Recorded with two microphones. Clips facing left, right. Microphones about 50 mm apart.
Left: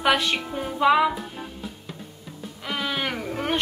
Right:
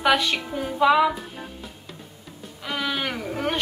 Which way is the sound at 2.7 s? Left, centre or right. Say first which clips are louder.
Even; centre.